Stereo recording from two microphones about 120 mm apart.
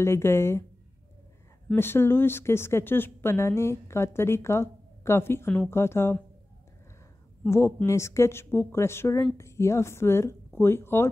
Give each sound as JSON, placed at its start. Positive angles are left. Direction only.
{"t": 0.0, "sound": "speech", "side_deg": 20}
{"t": 1.8, "sound": "speech", "side_deg": 20}
{"t": 7.4, "sound": "speech", "side_deg": 20}